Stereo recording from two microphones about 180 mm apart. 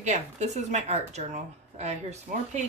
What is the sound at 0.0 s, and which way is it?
A woman's voice, 40° right (ahead or behind).